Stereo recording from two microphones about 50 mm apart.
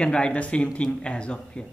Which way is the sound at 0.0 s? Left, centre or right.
Left.